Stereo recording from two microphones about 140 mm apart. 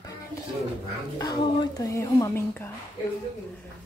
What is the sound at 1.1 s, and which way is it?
A woman's voice, 30° left (ahead or behind).